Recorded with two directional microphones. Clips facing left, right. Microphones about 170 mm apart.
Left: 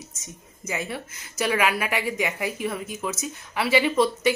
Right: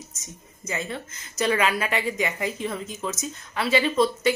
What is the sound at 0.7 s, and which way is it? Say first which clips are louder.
A woman's voice: even; 10° left (ahead or behind).